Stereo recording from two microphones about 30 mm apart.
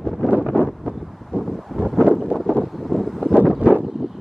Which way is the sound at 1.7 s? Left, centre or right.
Centre.